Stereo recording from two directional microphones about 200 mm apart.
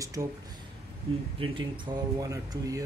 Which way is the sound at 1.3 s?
25° right (ahead or behind).